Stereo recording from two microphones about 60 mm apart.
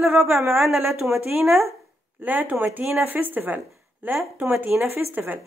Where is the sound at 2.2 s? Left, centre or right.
Right.